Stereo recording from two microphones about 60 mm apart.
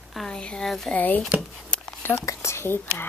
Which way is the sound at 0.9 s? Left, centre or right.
Left.